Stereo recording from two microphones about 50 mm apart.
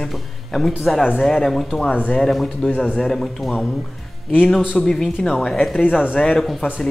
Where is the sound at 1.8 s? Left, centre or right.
Left.